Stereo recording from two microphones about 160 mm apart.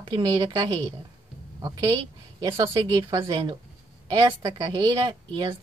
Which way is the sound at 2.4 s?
25° right (ahead or behind).